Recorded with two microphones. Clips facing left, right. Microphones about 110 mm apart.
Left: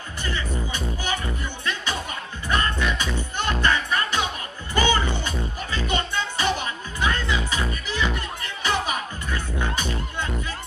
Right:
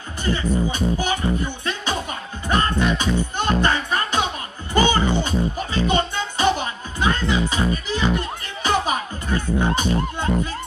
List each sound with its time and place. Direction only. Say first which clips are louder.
0.2 s music: right 8 dB; 25° right (ahead or behind)
8.6 s speech: right 4 dB; 30° right (ahead or behind)